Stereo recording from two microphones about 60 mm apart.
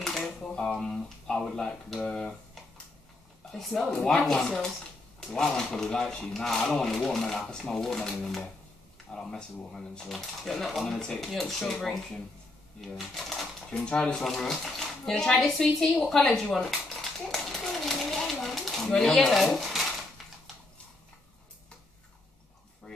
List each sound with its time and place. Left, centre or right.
0.0 s speech: centre
13.7 s speech: centre
14.1 s speech: centre
16.5 s a sound: centre